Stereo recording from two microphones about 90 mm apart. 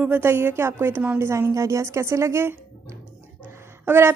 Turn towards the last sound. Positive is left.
turn(degrees=-25)  # may be behind; listen again after turning